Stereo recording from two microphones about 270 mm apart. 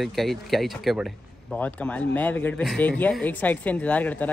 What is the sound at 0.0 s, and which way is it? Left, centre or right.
Speech, centre.